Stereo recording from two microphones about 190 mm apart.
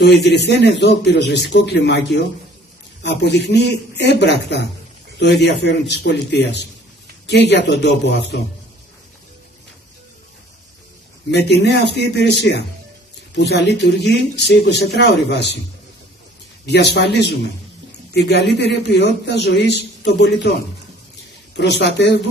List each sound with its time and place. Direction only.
0.0 s a man's voice: 60° left (ahead or behind)
11.2 s a man's voice: 60° left (ahead or behind)
16.6 s a man's voice: 60° left (ahead or behind)